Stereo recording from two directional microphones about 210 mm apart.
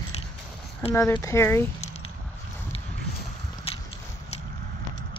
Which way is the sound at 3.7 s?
30° left (ahead or behind).